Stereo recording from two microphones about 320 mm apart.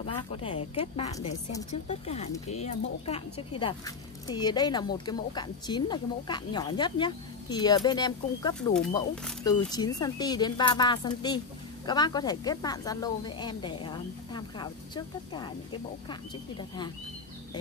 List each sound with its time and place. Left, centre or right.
0.0 s speech: centre